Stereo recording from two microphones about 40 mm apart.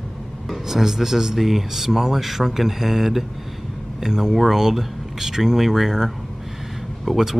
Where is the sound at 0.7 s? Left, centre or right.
Centre.